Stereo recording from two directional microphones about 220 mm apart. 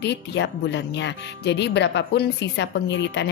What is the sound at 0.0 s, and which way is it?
A woman's voice, 50° left (ahead or behind).